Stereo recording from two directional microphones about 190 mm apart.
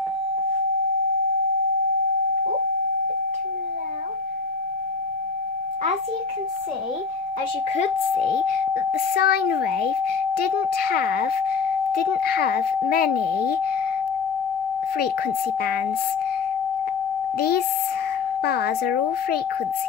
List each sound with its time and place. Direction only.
8.7 s a child's voice: 55° left (ahead or behind)
17.4 s a child's voice: 55° left (ahead or behind)